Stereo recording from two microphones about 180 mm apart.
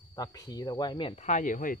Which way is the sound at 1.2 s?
45° left (ahead or behind).